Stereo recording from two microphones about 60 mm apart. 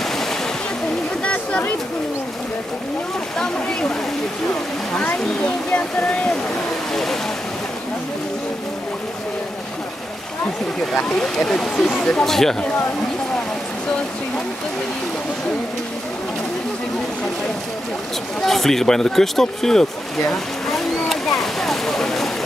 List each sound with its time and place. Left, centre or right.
0.0 s a sound: centre
1.2 s a sound: centre
3.3 s speech: centre
5.0 s speech: left
6.9 s speech: centre
11.1 s speech: centre
18.4 s speech: centre
20.6 s vehicle: centre